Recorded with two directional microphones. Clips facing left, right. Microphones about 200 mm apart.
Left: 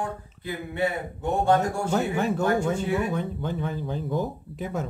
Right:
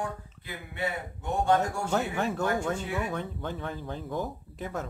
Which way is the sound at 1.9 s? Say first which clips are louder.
Left 5 dB; 5° left (ahead or behind).